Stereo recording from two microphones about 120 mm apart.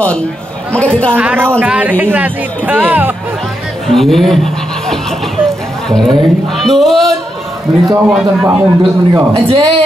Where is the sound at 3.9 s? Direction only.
Centre (ahead or behind).